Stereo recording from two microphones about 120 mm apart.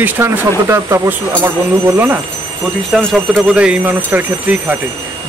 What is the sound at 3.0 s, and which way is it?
Speech, 5° left (ahead or behind).